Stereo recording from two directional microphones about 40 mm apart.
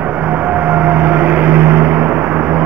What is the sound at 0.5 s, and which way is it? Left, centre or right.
Vehicle, right.